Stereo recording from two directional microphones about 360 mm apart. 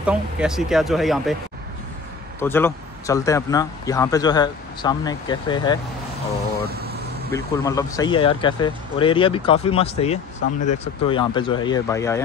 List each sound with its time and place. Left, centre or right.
0.0 s speech: centre
2.4 s speech: centre
6.8 s vehicle: right
7.3 s speech: centre